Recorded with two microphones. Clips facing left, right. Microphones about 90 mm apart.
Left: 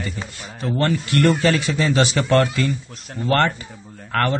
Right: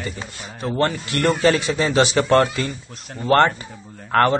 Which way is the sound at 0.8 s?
20° right (ahead or behind).